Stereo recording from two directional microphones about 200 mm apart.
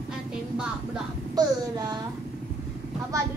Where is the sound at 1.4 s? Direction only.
20° right (ahead or behind).